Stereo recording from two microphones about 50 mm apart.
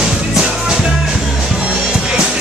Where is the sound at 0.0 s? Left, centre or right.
Centre.